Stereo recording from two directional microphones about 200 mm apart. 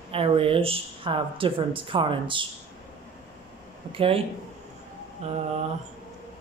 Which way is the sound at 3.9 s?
30° right (ahead or behind).